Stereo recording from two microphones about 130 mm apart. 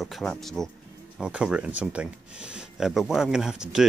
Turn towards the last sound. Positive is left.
turn(degrees=-5)  # may be behind; listen again after turning